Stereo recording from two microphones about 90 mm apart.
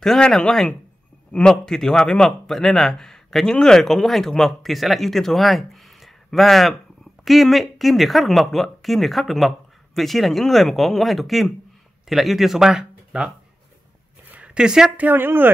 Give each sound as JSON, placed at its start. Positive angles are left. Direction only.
{"t": 0.0, "sound": "speech", "side_deg": 5}
{"t": 14.3, "sound": "speech", "side_deg": -15}
{"t": 15.0, "sound": "speech", "side_deg": -25}